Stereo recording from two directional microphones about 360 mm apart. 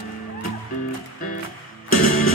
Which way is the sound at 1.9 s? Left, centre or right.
Left.